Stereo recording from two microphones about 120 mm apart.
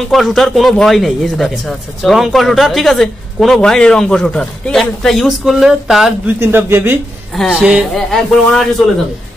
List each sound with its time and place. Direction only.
0.1 s speech: centre (ahead or behind)
6.2 s speech: 20° right (ahead or behind)
7.4 s speech: 5° right (ahead or behind)